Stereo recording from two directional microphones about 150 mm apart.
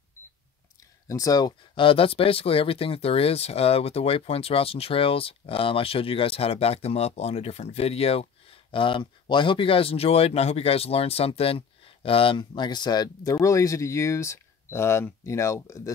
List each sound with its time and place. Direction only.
1.0 s speech: 25° left (ahead or behind)